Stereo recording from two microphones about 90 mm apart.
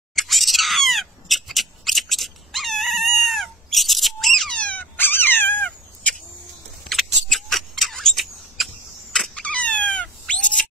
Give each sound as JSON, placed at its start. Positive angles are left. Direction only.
{"t": 0.1, "sound": "bird", "side_deg": 0}
{"t": 4.6, "sound": "dog", "side_deg": 15}
{"t": 6.9, "sound": "a sound", "side_deg": 0}